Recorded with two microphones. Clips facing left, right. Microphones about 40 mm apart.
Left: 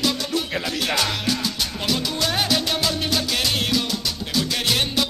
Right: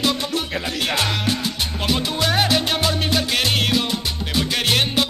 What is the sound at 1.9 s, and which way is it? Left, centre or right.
Music, right.